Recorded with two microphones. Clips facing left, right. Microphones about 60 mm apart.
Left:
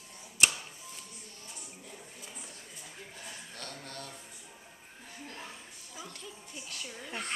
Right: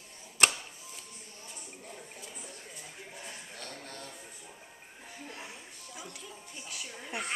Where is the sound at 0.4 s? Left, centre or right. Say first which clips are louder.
Right 2 dB; right.